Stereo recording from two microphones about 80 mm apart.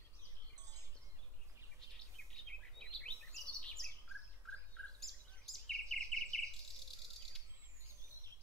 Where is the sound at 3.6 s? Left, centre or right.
Centre.